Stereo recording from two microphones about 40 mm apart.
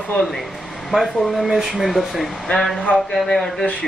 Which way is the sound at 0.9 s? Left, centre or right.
Right.